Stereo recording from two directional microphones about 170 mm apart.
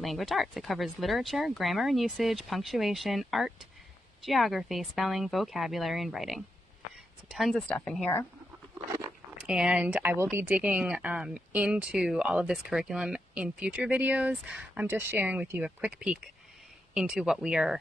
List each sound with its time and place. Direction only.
0.0 s speech: centre (ahead or behind)
8.7 s a sound: 20° right (ahead or behind)
9.4 s speech: 5° right (ahead or behind)